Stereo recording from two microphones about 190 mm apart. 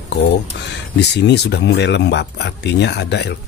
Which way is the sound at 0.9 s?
65° left (ahead or behind).